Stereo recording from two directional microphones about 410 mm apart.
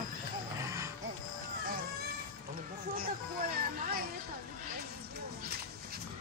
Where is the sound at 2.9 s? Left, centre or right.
Right.